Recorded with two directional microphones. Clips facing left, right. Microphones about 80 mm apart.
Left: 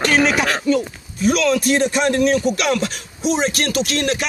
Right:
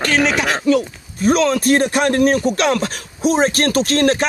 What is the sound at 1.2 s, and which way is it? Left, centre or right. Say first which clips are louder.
Speech: right 2 dB; right.